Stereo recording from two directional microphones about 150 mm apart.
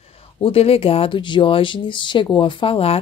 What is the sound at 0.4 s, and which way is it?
Speech, 40° left (ahead or behind).